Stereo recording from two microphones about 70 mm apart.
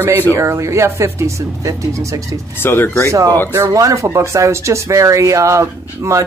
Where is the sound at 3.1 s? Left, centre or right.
Right.